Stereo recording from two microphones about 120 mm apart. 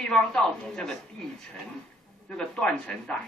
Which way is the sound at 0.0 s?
5° left (ahead or behind).